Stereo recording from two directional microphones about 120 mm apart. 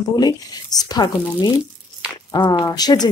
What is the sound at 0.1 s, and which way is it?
Speech, 35° left (ahead or behind).